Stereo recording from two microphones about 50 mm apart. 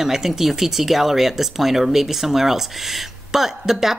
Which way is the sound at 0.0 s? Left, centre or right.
Centre.